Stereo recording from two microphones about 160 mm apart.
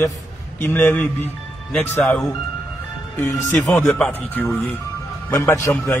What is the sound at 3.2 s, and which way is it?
Speech, 15° left (ahead or behind).